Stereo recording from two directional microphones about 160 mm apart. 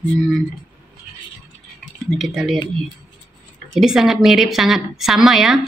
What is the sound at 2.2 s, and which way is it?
Speech, centre (ahead or behind).